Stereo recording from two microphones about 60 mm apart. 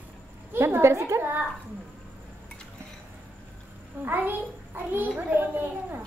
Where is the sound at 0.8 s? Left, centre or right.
Right.